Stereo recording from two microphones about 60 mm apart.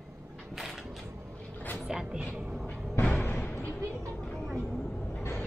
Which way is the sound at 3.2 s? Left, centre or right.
Left.